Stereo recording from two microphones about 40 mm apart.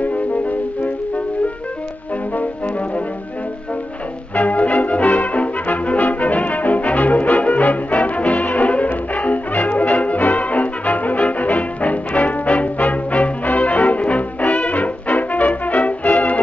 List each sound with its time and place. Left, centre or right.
0.0 s music: left
4.4 s brass instrument: left